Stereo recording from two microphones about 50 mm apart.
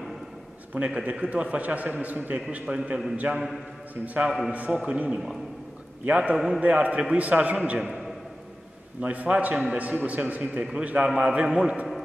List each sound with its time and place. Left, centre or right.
0.7 s a man's voice: right
6.3 s speech: centre
6.6 s a man's voice: right
9.0 s a man's voice: right